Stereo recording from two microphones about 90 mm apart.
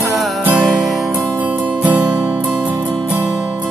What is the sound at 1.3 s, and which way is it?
Music, 20° right (ahead or behind).